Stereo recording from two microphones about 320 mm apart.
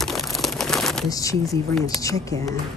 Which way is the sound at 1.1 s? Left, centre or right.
Centre.